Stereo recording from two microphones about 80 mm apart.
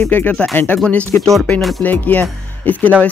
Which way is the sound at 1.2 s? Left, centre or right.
Centre.